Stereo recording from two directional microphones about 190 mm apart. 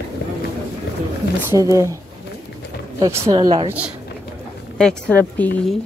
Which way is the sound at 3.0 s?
15° right (ahead or behind).